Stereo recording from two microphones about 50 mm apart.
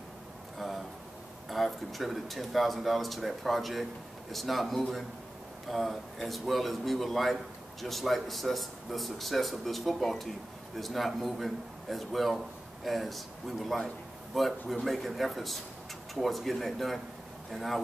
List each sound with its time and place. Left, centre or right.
1.5 s a man's voice: centre